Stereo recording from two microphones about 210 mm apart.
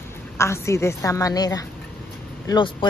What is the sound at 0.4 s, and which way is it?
A woman's voice, 15° left (ahead or behind).